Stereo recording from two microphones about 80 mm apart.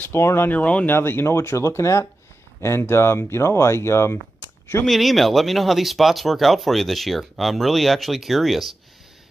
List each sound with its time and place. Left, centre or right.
0.0 s speech: left
0.5 s speech: centre
0.9 s speech: left
4.8 s speech: centre